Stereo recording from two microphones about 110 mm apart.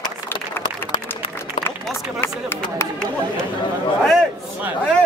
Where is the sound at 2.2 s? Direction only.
20° left (ahead or behind).